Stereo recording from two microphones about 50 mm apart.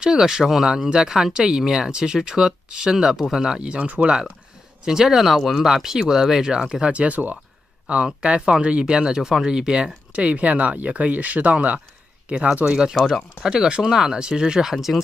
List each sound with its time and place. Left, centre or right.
0.0 s speech: centre
3.6 s speech: right
4.8 s speech: centre
12.9 s speech: centre
13.4 s speech: centre